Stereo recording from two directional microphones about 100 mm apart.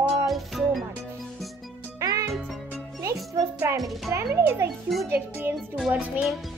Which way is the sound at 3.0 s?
35° right (ahead or behind).